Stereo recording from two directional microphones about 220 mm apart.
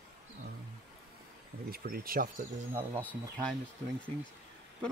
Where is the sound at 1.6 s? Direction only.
40° right (ahead or behind).